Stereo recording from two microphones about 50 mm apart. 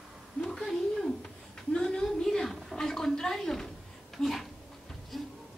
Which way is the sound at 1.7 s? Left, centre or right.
Centre.